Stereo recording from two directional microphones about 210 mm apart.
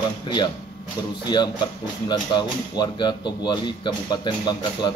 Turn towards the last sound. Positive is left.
turn(degrees=20)  # may be behind; listen again after turning